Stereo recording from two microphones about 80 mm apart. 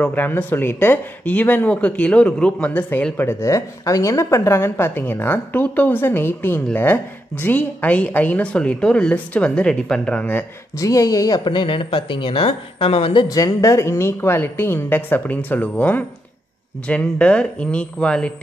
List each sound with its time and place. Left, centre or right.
0.0 s speech: left
3.4 s speech: left
8.5 s speech: centre
10.8 s speech: left
11.4 s speech: left
13.3 s speech: left; by 18.3 s centre